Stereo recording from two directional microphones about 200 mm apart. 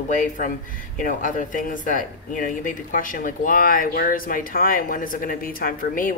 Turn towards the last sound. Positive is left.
turn(degrees=45)  # may be behind; listen again after turning